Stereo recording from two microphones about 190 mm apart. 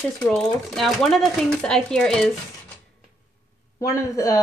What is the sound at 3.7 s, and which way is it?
Speech, 15° left (ahead or behind).